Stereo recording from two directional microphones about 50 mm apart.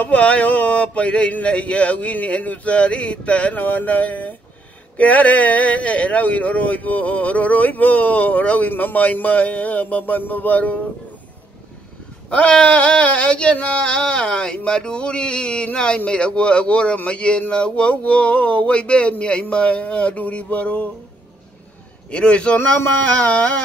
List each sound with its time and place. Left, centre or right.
0.0 s speech: left
12.3 s speech: left
22.1 s speech: left